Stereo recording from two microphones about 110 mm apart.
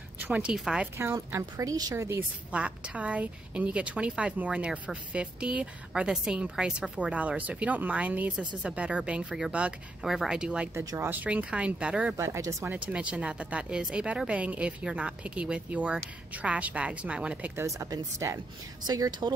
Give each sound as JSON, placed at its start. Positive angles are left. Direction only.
{"t": 0.2, "sound": "a woman's voice", "side_deg": -10}
{"t": 1.3, "sound": "speech", "side_deg": -30}
{"t": 2.0, "sound": "a woman's voice", "side_deg": -15}
{"t": 10.7, "sound": "a woman's voice", "side_deg": -25}
{"t": 12.2, "sound": "speech", "side_deg": -30}
{"t": 12.6, "sound": "a woman's voice", "side_deg": -10}
{"t": 17.6, "sound": "speech", "side_deg": -30}